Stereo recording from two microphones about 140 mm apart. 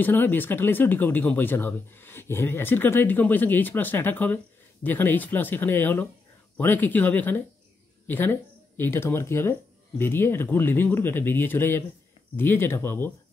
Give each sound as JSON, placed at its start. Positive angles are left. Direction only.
{"t": 0.0, "sound": "speech", "side_deg": 15}